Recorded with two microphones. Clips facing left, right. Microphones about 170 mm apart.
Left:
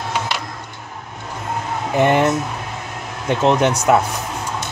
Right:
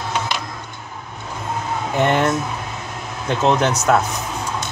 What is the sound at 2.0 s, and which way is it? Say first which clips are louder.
Speech: left 3 dB; 15° left (ahead or behind).